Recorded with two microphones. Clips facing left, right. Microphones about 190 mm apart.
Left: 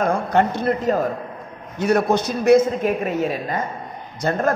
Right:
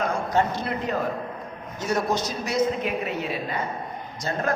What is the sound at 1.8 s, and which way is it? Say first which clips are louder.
A man's voice: left 7 dB; 60° left (ahead or behind).